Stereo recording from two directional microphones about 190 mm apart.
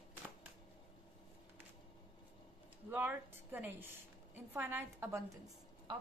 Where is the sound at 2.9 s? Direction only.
10° right (ahead or behind).